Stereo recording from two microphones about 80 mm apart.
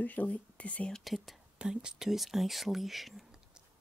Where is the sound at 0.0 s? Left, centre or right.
Centre.